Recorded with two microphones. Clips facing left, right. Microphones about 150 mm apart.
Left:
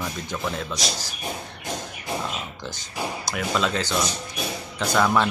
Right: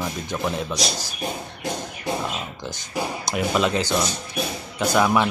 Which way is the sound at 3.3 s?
20° right (ahead or behind).